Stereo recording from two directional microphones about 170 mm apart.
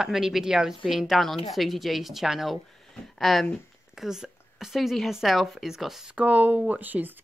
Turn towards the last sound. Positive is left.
turn(degrees=-10)  # may be behind; listen again after turning